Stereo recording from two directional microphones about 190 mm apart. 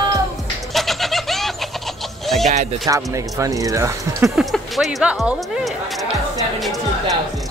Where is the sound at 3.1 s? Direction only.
15° right (ahead or behind).